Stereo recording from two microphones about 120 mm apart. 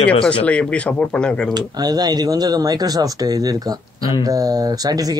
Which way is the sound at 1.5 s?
35° right (ahead or behind).